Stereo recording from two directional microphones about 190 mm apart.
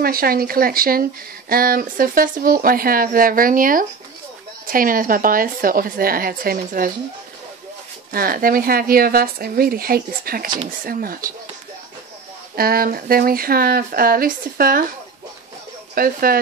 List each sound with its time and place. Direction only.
0.0 s speech: 50° right (ahead or behind)
8.1 s speech: 50° right (ahead or behind)
12.5 s speech: 50° right (ahead or behind)
15.9 s speech: 50° right (ahead or behind)